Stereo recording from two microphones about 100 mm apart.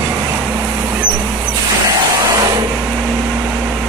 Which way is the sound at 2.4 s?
40° right (ahead or behind).